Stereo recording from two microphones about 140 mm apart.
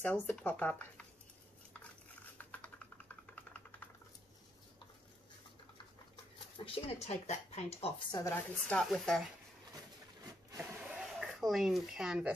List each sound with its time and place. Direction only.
0.0 s speech: 10° left (ahead or behind)
2.3 s typing: 10° left (ahead or behind)
6.3 s speech: 40° left (ahead or behind)
8.1 s a woman's voice: 25° left (ahead or behind)
8.5 s speech: 5° left (ahead or behind)
10.6 s a sound: 15° right (ahead or behind)
11.0 s speech: 5° right (ahead or behind)